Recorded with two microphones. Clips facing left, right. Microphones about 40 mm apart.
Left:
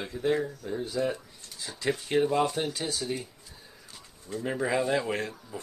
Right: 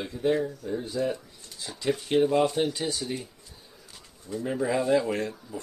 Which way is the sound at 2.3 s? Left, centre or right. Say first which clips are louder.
Right 3 dB; centre.